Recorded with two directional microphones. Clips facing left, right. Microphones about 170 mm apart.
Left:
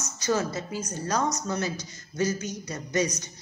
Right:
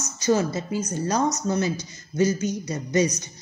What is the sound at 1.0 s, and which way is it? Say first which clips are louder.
Speech: right 3 dB; 20° right (ahead or behind).